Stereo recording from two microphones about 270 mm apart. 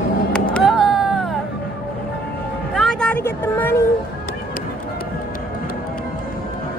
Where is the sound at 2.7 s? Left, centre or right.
Centre.